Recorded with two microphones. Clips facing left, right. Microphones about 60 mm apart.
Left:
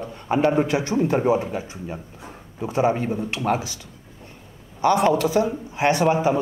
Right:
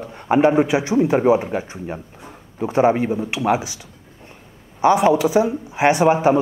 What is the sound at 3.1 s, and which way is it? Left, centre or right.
Speech, centre.